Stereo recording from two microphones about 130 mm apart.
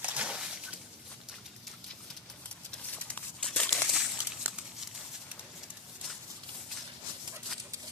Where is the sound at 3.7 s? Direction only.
5° right (ahead or behind).